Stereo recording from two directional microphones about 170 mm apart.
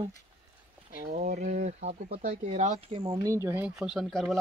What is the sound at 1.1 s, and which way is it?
Speech, 45° right (ahead or behind).